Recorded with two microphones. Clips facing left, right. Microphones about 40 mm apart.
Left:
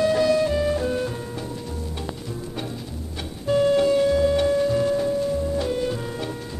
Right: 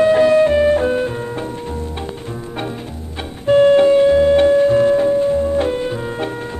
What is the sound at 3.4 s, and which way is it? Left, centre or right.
Music, right.